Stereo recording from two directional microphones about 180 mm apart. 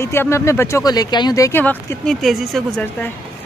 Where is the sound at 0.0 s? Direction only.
15° left (ahead or behind).